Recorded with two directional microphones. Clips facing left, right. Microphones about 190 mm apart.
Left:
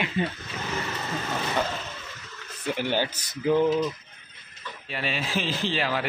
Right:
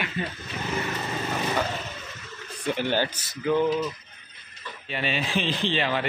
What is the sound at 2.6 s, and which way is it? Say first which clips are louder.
Speech: right 1 dB; 10° left (ahead or behind).